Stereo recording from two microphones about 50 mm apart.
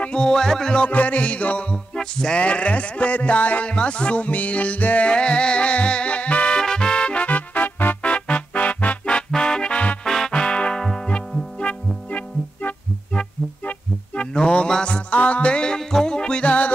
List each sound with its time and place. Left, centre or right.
0.0 s music: centre
0.8 s music: left
2.0 s music: centre
6.6 s music: centre
10.0 s music: centre
10.3 s music: centre